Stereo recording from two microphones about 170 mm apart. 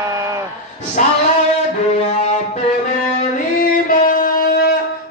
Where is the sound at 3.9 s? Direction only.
55° left (ahead or behind).